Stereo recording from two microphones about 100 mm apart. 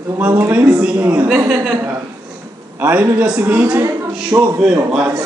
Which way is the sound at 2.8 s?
15° right (ahead or behind).